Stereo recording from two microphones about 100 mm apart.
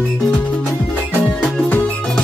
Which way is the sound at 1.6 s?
20° left (ahead or behind).